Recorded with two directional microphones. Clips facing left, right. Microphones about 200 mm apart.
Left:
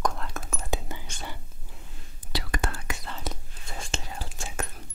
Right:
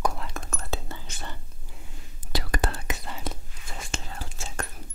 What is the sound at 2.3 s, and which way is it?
Whispering, 35° right (ahead or behind).